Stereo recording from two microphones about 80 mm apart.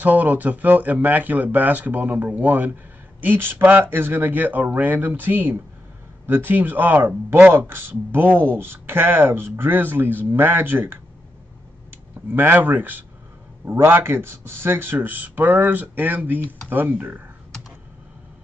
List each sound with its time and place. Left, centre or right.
0.0 s speech: right
12.3 s speech: right